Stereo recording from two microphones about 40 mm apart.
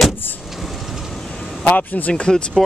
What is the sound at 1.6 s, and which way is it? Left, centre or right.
Speech, left.